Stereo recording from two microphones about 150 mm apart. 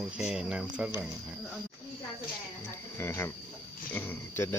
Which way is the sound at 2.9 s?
15° left (ahead or behind).